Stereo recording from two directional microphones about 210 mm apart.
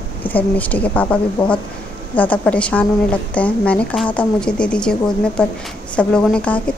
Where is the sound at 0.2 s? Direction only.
10° left (ahead or behind).